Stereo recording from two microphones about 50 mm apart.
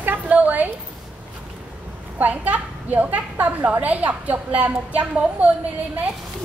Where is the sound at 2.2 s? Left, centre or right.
Right.